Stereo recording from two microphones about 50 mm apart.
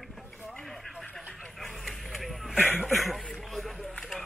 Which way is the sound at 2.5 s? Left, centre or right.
Left.